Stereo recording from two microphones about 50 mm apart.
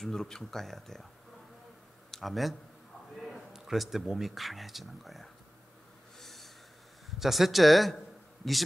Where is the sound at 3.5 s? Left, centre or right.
Centre.